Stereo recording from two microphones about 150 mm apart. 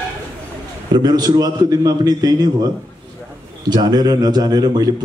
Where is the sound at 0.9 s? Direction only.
25° right (ahead or behind).